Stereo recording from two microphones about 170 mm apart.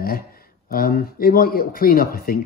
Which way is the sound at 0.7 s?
60° left (ahead or behind).